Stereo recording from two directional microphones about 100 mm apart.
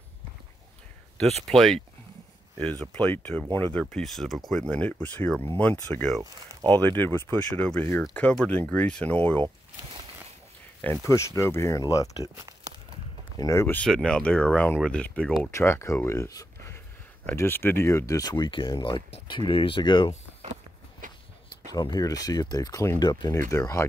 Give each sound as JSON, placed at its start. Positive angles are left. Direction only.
{"t": 1.5, "sound": "speech", "side_deg": 5}
{"t": 3.9, "sound": "speech", "side_deg": 0}
{"t": 6.7, "sound": "speech", "side_deg": 20}
{"t": 8.1, "sound": "speech", "side_deg": 15}
{"t": 11.1, "sound": "speech", "side_deg": 30}
{"t": 13.4, "sound": "speech", "side_deg": 30}
{"t": 13.8, "sound": "speech", "side_deg": 5}
{"t": 15.5, "sound": "speech", "side_deg": 25}
{"t": 21.7, "sound": "speech", "side_deg": 40}
{"t": 23.3, "sound": "speech", "side_deg": 30}